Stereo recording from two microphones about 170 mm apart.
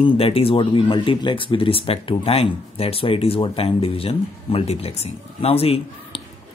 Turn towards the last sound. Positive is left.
turn(degrees=35)  # may be behind; listen again after turning